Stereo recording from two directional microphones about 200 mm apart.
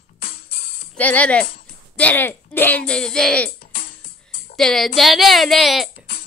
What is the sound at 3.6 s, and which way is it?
Music, 50° left (ahead or behind).